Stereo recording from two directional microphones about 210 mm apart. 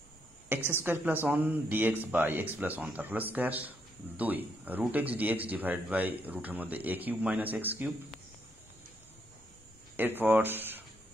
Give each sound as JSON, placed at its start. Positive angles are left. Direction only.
{"t": 0.7, "sound": "speech", "side_deg": -10}
{"t": 9.9, "sound": "speech", "side_deg": -10}